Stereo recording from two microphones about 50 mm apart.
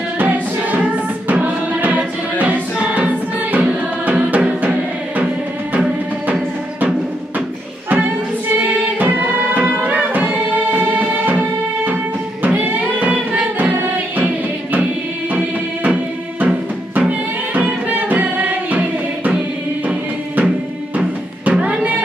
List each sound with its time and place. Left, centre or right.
0.2 s music: right
8.5 s music: right